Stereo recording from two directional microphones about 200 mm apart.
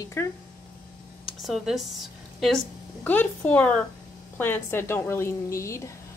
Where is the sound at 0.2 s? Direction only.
15° left (ahead or behind).